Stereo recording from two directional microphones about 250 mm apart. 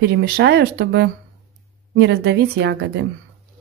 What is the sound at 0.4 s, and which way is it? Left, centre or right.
A woman's voice, right.